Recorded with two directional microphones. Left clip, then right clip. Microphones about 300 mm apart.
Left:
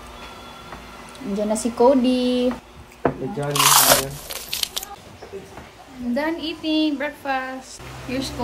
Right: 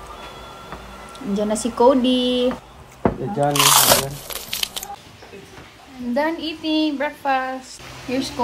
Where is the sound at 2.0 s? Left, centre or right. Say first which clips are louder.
Right 2 dB; centre.